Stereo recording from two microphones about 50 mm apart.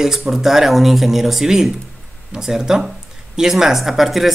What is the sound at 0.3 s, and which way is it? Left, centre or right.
Speech, centre.